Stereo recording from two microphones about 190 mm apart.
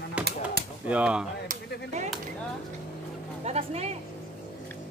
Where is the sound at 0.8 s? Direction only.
5° right (ahead or behind).